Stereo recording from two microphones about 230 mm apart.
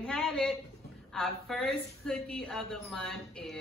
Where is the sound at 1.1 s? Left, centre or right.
Centre.